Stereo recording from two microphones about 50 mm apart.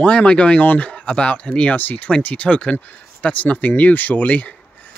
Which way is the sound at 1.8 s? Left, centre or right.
Left.